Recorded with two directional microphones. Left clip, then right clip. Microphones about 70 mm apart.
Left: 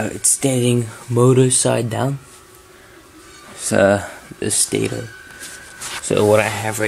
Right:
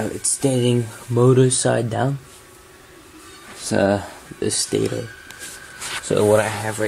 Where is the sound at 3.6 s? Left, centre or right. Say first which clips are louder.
Left 4 dB; left.